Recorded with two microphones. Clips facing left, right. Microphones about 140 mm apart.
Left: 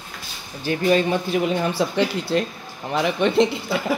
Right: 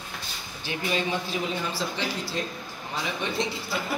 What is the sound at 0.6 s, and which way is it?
Speech, 50° left (ahead or behind).